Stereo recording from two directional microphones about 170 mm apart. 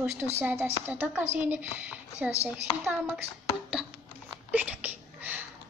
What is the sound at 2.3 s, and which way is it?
Speech, 20° left (ahead or behind).